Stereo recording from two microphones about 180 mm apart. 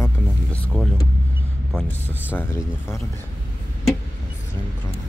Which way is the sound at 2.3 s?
15° left (ahead or behind).